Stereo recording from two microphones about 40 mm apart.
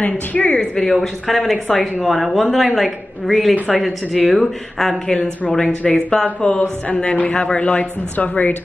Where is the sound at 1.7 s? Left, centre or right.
Left.